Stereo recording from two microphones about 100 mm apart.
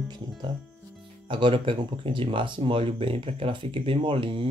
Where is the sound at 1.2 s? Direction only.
55° right (ahead or behind).